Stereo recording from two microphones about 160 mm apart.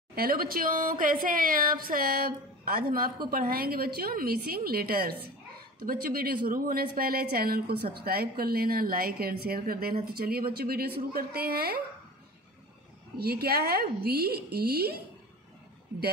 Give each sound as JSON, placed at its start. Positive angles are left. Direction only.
{"t": 0.1, "sound": "a woman's voice", "side_deg": -65}
{"t": 13.2, "sound": "a woman's voice", "side_deg": -75}